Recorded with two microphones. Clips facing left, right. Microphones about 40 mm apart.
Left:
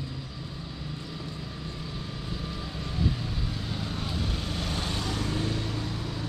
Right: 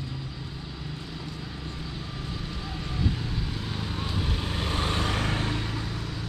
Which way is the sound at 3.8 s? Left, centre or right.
Centre.